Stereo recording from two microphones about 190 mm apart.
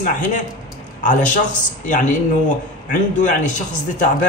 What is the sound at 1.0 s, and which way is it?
A man's voice, 40° left (ahead or behind).